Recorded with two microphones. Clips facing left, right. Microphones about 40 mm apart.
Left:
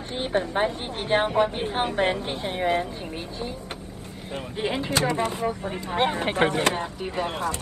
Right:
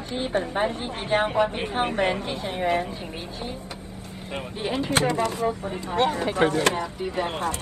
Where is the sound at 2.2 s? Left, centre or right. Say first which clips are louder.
Even; left.